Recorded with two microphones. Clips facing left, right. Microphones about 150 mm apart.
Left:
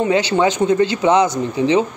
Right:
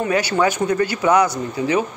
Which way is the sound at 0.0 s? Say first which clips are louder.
Left 3 dB; 20° left (ahead or behind).